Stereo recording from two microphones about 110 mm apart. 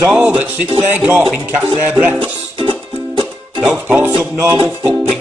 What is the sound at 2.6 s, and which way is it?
Music, 50° right (ahead or behind).